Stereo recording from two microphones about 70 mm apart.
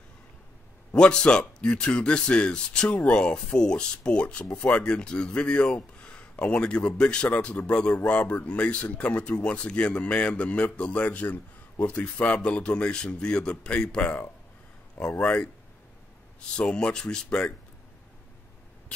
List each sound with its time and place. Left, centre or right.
0.9 s speech: centre